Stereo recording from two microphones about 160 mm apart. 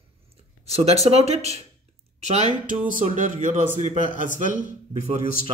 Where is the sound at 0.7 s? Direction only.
40° right (ahead or behind).